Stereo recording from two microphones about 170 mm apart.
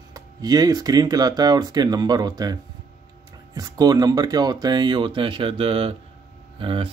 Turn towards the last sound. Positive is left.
turn(degrees=-30)  # may be behind; listen again after turning